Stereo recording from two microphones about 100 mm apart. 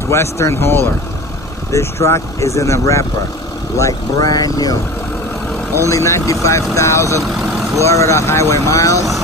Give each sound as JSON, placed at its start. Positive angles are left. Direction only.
{"t": 0.1, "sound": "speech", "side_deg": 25}
{"t": 5.9, "sound": "speech", "side_deg": 30}